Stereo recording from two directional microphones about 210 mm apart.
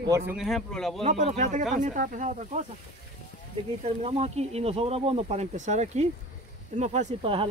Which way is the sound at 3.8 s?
30° right (ahead or behind).